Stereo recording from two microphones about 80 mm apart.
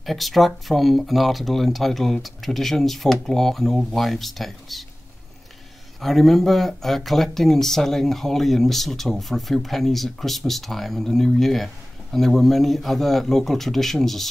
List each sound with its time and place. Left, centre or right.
0.0 s speech: centre
5.9 s speech: centre